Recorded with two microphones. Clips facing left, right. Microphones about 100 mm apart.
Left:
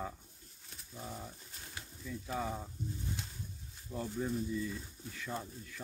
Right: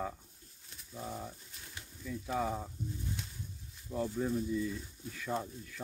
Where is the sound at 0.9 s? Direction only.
15° right (ahead or behind).